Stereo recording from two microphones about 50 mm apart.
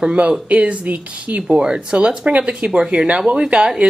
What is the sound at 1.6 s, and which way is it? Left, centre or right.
Speech, centre.